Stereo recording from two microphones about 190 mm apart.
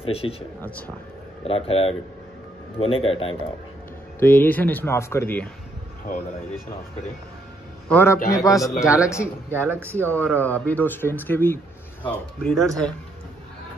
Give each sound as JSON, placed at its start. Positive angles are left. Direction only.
{"t": 0.0, "sound": "speech", "side_deg": 30}
{"t": 0.6, "sound": "speech", "side_deg": 10}
{"t": 1.4, "sound": "a man's voice", "side_deg": 30}
{"t": 4.2, "sound": "speech", "side_deg": 10}
{"t": 7.9, "sound": "speech", "side_deg": 10}
{"t": 9.7, "sound": "speech", "side_deg": -10}
{"t": 9.9, "sound": "speech", "side_deg": 10}